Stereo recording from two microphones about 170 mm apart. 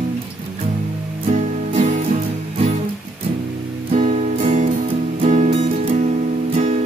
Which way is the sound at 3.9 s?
45° right (ahead or behind).